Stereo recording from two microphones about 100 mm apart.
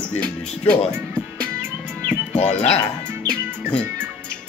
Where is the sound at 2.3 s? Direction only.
90° left.